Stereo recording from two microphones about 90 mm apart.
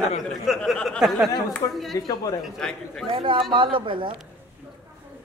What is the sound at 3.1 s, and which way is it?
A man's voice, 65° right (ahead or behind).